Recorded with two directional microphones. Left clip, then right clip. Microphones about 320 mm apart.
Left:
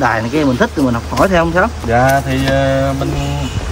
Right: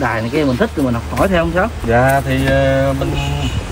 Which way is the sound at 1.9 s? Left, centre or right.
Centre.